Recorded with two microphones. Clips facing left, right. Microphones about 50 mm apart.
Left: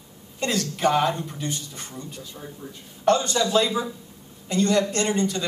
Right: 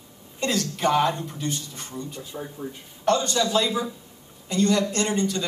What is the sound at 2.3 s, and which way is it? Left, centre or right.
Speech, centre.